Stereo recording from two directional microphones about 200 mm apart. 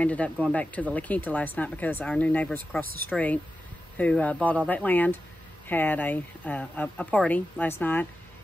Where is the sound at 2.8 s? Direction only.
50° right (ahead or behind).